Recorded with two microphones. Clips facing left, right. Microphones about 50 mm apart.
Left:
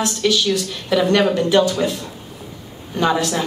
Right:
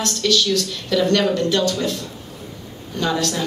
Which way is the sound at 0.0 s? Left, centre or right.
Centre.